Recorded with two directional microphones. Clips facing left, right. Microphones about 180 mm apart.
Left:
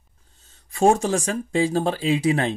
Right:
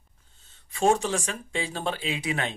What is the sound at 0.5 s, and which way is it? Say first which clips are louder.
Speech: left 5 dB; 45° left (ahead or behind).